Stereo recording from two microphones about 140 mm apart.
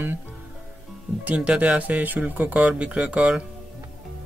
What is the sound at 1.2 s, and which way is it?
Speech, 10° right (ahead or behind).